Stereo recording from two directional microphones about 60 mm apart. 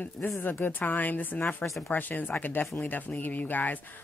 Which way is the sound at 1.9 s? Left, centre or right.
Left.